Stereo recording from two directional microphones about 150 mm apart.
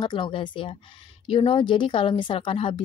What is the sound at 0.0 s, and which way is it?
A woman's voice, 35° left (ahead or behind).